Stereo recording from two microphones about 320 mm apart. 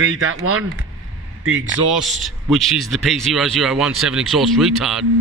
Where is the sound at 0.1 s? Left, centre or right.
Right.